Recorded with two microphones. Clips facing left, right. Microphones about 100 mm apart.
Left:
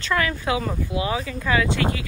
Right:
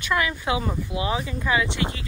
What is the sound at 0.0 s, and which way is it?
Speech, 15° right (ahead or behind).